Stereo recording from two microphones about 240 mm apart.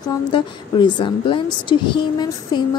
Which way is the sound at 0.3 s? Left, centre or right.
Centre.